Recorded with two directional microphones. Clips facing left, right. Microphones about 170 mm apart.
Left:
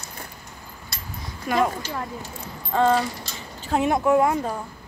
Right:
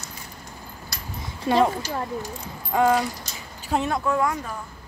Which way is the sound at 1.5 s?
30° right (ahead or behind).